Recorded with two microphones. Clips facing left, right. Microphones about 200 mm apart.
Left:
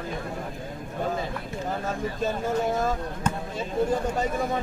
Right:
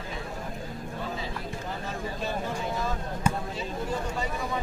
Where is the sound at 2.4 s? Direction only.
45° left (ahead or behind).